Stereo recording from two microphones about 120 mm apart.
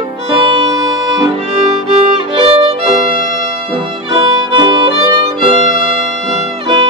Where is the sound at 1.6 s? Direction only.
60° right (ahead or behind).